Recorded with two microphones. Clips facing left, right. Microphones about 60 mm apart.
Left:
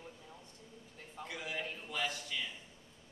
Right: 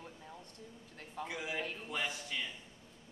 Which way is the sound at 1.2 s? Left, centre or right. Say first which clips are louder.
Right 2 dB; centre.